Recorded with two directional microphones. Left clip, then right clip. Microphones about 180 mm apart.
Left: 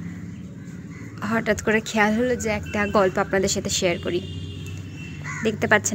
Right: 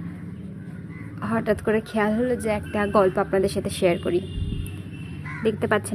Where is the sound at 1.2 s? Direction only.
Centre (ahead or behind).